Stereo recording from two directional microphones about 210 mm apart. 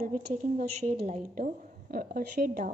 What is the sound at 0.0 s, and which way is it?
A woman's voice, 35° right (ahead or behind).